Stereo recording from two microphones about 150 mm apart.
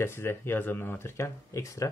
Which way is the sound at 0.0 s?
15° left (ahead or behind).